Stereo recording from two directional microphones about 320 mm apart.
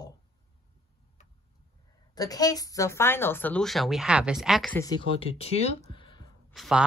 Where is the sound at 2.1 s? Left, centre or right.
Centre.